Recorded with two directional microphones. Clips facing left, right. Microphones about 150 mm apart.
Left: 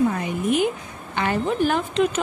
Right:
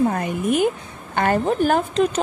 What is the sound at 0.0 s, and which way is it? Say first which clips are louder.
A woman's voice: right 1 dB; 50° right (ahead or behind).